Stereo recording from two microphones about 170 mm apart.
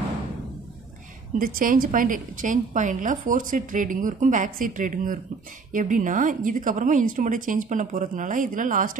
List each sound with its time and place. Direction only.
1.4 s a woman's voice: 55° right (ahead or behind)